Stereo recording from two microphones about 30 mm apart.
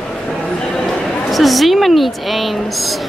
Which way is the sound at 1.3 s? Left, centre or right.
Centre.